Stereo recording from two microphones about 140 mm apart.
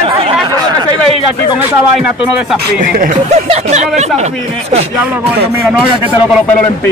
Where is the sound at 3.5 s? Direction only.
55° right (ahead or behind).